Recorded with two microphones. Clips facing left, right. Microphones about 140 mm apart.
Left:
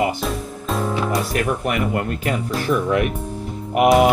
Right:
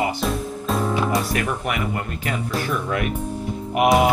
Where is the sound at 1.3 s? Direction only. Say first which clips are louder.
Left 3 dB; 45° left (ahead or behind).